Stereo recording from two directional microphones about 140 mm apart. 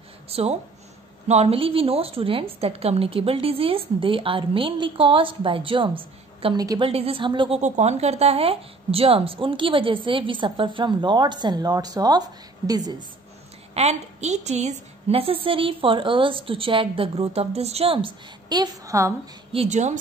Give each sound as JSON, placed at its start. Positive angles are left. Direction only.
{"t": 0.3, "sound": "a woman's voice", "side_deg": -45}
{"t": 7.6, "sound": "a woman's voice", "side_deg": -55}
{"t": 13.7, "sound": "a woman's voice", "side_deg": -50}
{"t": 19.5, "sound": "speech", "side_deg": -50}